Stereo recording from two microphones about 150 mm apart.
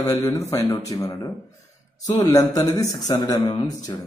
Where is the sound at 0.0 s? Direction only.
20° left (ahead or behind).